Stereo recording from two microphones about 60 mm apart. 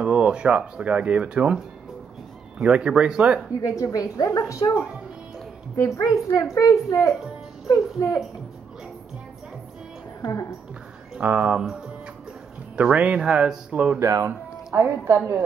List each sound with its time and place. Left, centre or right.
0.0 s speech: centre
2.6 s speech: centre
3.6 s a woman's voice: left
5.8 s a woman's voice: left
7.6 s a woman's voice: left
11.1 s speech: right
12.7 s speech: right
13.9 s speech: right
14.8 s a woman's voice: right